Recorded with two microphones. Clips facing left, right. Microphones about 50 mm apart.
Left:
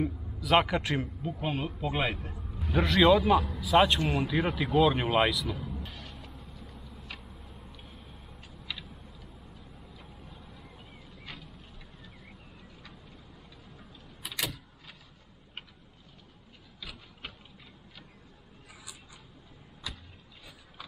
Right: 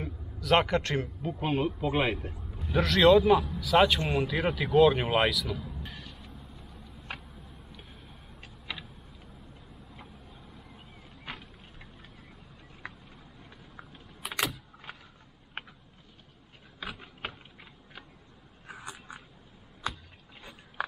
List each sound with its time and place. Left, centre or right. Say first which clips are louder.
0.0 s a man's voice: left 6 dB; centre
1.2 s speech: right 4 dB; centre
2.7 s speech: right 2 dB; centre
5.6 s music: left 2 dB; left
13.7 s keys jangling: right 2 dB; right
16.8 s a sound: right 6 dB; right
18.7 s biting: right 9 dB; right